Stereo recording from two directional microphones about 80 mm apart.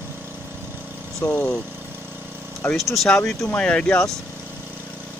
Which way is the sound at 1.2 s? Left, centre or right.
Left.